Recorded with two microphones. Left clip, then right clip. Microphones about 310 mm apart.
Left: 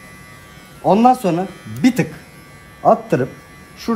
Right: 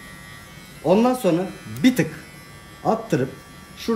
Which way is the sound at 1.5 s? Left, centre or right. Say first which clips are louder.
Left 2 dB; centre.